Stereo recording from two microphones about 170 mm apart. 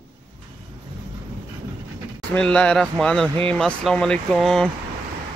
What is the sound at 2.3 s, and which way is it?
Speech, 5° left (ahead or behind).